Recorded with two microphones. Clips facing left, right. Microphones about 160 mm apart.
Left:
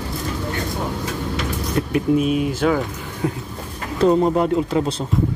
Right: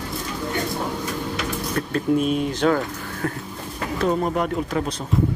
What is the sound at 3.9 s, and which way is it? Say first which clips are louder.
Speech: left 6 dB; 25° left (ahead or behind).